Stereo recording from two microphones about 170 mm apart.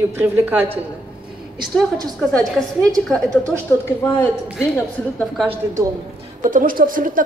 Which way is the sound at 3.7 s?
15° left (ahead or behind).